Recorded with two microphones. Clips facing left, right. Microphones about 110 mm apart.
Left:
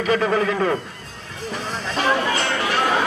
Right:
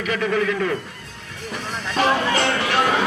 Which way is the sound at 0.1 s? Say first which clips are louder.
Left 2 dB; 35° left (ahead or behind).